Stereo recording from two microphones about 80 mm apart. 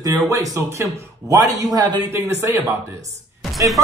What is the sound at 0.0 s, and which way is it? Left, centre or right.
Speech, right.